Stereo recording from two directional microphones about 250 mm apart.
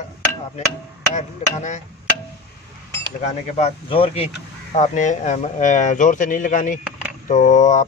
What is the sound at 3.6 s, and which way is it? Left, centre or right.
Speech, left.